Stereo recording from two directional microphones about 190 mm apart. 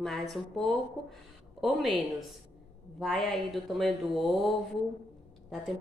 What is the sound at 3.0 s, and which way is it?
A woman's voice, centre (ahead or behind).